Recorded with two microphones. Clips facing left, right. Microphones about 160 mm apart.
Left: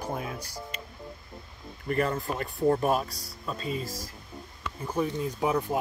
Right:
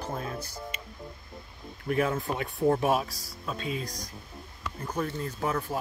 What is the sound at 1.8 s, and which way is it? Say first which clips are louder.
Speech: even; centre (ahead or behind).